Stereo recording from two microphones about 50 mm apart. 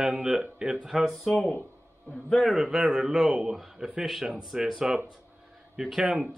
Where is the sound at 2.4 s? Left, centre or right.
Centre.